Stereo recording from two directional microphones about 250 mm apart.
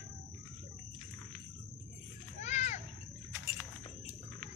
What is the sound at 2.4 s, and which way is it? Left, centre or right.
Children playing, left.